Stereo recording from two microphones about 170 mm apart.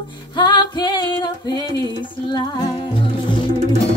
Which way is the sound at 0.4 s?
25° left (ahead or behind).